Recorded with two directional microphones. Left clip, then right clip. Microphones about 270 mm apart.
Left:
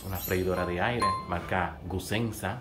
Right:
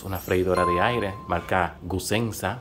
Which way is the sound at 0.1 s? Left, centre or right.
Right.